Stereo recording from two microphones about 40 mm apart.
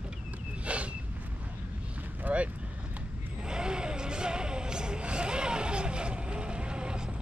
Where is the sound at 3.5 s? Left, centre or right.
Centre.